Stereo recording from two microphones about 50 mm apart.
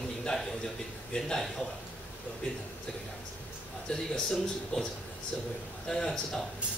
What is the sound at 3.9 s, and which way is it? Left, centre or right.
Speech, centre.